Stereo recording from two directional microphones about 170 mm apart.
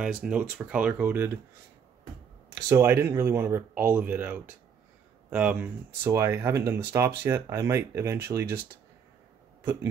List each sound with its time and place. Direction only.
0.0 s speech: 5° right (ahead or behind)
2.5 s speech: 15° right (ahead or behind)